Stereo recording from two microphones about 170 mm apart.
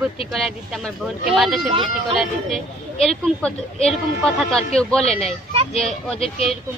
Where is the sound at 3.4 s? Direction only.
5° left (ahead or behind).